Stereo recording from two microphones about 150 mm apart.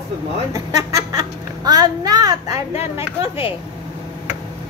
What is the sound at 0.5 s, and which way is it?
A child's voice, 25° right (ahead or behind).